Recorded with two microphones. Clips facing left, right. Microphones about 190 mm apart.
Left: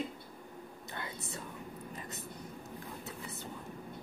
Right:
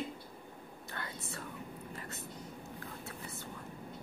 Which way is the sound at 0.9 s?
15° left (ahead or behind).